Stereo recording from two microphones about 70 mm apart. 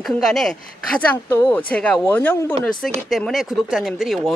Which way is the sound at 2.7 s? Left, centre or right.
Centre.